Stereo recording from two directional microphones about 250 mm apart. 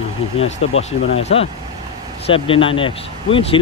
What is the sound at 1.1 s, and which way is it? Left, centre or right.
Speech, left.